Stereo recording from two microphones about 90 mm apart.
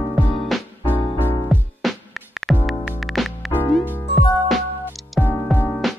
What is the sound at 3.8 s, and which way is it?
Music, 20° left (ahead or behind).